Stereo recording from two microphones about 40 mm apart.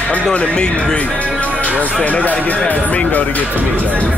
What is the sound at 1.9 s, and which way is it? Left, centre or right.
Speech, left.